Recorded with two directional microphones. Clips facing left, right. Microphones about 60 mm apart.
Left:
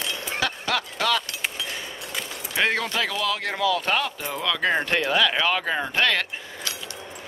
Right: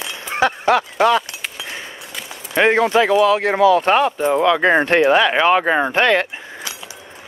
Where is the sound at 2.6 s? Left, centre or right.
Right.